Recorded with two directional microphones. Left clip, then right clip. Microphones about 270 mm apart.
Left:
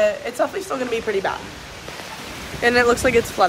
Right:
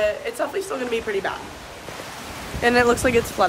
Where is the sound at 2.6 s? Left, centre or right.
Centre.